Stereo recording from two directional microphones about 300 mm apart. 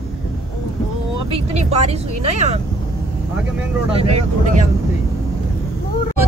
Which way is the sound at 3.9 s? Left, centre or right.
Centre.